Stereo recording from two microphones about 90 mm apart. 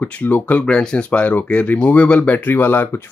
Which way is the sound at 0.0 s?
20° left (ahead or behind).